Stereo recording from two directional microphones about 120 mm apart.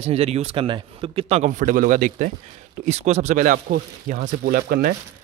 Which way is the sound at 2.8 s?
65° right (ahead or behind).